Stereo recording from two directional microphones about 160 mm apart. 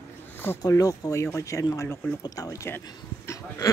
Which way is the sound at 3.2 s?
20° left (ahead or behind).